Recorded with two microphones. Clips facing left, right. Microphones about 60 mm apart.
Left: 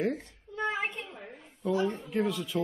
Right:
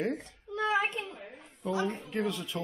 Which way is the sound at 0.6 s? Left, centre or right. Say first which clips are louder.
Right 3 dB; right.